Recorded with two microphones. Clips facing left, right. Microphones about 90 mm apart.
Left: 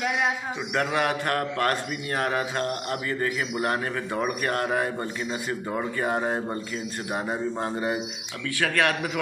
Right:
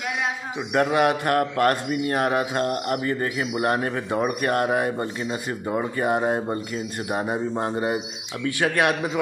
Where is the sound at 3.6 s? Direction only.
30° right (ahead or behind).